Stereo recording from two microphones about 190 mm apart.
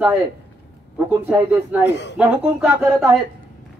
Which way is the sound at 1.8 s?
65° left (ahead or behind).